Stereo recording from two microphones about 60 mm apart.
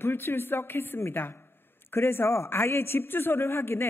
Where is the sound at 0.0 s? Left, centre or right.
Left.